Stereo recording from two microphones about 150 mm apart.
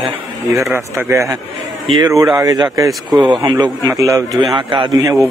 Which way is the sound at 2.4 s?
25° right (ahead or behind).